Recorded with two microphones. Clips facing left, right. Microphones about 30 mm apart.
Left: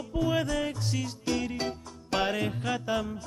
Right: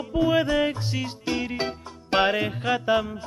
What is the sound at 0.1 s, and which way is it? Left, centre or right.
Music, right.